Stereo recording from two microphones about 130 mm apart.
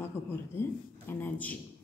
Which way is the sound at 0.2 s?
20° left (ahead or behind).